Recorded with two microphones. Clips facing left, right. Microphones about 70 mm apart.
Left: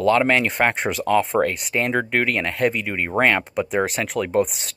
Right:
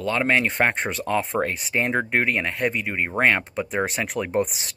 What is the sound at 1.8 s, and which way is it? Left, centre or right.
Speech, centre.